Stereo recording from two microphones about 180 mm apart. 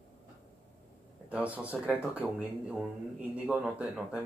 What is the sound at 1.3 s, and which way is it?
Speech, 5° right (ahead or behind).